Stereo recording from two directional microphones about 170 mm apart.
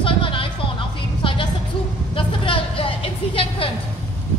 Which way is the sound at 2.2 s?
30° left (ahead or behind).